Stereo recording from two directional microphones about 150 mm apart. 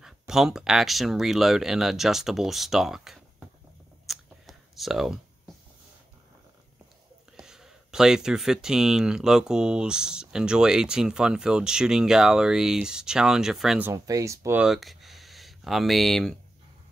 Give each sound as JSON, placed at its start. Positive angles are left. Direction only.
{"t": 0.0, "sound": "speech", "side_deg": 0}
{"t": 4.1, "sound": "a sound", "side_deg": 0}
{"t": 7.3, "sound": "speech", "side_deg": -5}
{"t": 13.8, "sound": "speech", "side_deg": -20}
{"t": 14.6, "sound": "speech", "side_deg": 0}